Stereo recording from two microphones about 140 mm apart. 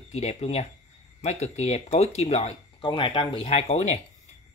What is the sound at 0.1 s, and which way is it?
Speech, 50° left (ahead or behind).